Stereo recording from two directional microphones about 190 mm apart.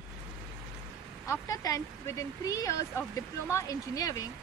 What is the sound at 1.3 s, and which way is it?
Speech, 20° left (ahead or behind).